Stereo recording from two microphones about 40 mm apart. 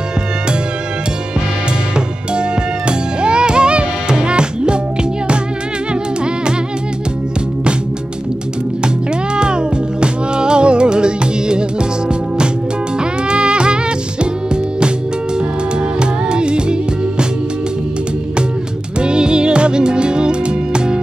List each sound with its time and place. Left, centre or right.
3.2 s music: right
8.8 s music: right
13.3 s music: right
16.0 s music: right
18.9 s music: right